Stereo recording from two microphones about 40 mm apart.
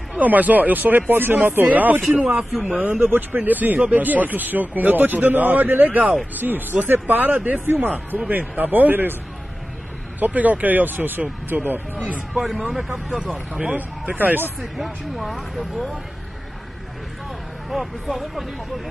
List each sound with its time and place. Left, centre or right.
0.2 s a man's voice: right
2.1 s speech: right
3.1 s a man's voice: right
10.2 s a man's voice: right
12.4 s speech: centre
13.6 s a man's voice: right
14.6 s speech: centre
17.6 s speech: centre